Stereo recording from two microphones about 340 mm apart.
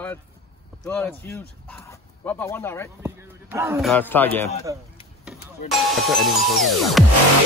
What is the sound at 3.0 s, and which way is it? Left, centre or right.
A man's voice, centre.